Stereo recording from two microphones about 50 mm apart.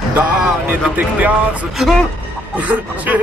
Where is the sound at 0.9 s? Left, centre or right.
Right.